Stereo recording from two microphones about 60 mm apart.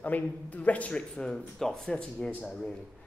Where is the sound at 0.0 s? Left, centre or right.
Left.